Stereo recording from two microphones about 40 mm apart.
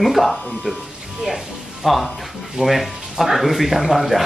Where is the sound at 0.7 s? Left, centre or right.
Centre.